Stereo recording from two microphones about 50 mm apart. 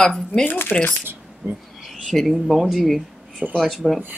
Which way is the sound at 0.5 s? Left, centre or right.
Left.